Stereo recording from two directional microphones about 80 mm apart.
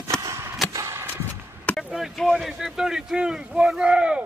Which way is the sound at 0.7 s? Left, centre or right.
Right.